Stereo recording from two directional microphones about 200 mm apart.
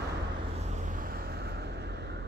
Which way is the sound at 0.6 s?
40° right (ahead or behind).